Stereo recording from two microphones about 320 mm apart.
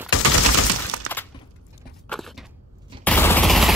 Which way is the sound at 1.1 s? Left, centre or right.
Right.